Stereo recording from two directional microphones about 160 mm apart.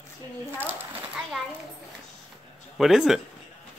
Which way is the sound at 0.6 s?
10° right (ahead or behind).